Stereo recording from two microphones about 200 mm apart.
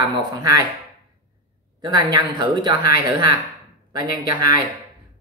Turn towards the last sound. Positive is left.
turn(degrees=-20)  # may be behind; listen again after turning